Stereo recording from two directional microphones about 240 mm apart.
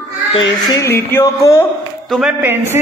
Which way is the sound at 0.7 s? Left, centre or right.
Centre.